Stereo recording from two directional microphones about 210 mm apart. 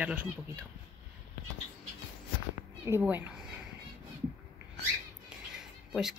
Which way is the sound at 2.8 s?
10° right (ahead or behind).